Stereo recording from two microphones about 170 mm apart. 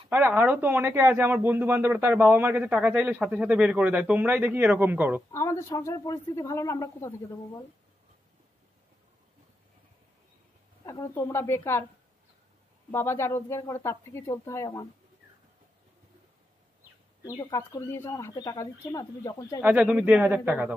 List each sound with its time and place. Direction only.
0.1 s speech: 10° right (ahead or behind)
5.3 s speech: 15° left (ahead or behind)
10.9 s speech: 15° left (ahead or behind)
12.9 s speech: 15° left (ahead or behind)
17.2 s speech: 25° left (ahead or behind)
19.6 s speech: 10° right (ahead or behind)